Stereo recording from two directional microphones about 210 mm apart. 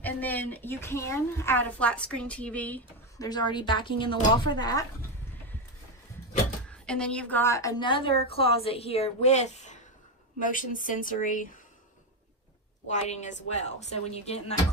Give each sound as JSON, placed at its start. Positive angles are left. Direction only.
{"t": 0.0, "sound": "a woman's voice", "side_deg": 10}
{"t": 3.3, "sound": "a woman's voice", "side_deg": 20}
{"t": 6.9, "sound": "a woman's voice", "side_deg": 5}
{"t": 12.8, "sound": "a woman's voice", "side_deg": 35}